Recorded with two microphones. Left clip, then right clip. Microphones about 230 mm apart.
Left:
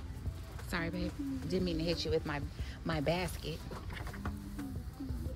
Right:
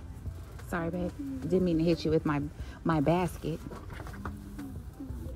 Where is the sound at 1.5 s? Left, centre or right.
Centre.